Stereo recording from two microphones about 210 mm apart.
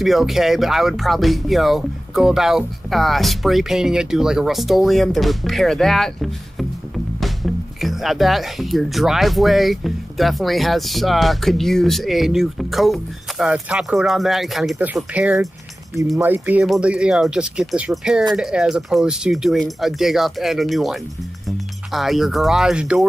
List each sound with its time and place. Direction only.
0.0 s speech: centre (ahead or behind)